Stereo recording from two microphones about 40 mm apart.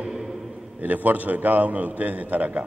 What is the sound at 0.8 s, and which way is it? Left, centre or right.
A man's voice, right.